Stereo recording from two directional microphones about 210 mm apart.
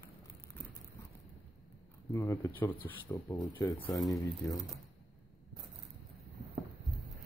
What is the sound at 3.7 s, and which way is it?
Speech, 10° left (ahead or behind).